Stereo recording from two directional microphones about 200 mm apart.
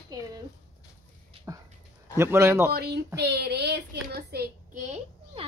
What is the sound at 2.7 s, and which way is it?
A woman's voice, 55° right (ahead or behind).